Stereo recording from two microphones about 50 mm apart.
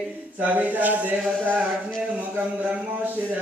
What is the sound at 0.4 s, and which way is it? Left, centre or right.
Speech, right.